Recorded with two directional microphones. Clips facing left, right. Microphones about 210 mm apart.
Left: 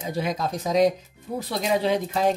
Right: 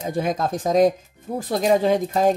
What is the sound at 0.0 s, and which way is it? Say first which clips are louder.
Speech: right 4 dB; 50° right (ahead or behind).